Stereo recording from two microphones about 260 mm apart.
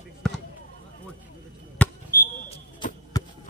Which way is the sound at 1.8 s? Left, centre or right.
Centre.